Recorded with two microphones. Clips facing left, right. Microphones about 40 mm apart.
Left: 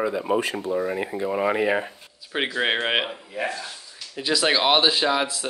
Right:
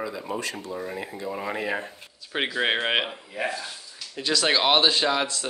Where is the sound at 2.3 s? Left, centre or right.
Centre.